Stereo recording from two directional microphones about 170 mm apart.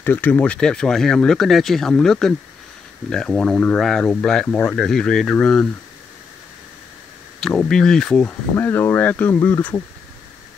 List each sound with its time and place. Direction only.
0.0 s speech: 10° left (ahead or behind)
7.3 s speech: centre (ahead or behind)